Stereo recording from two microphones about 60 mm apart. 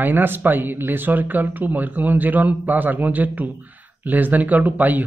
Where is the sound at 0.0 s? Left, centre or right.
Right.